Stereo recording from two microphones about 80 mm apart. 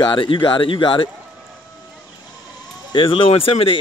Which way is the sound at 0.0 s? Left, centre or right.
Left.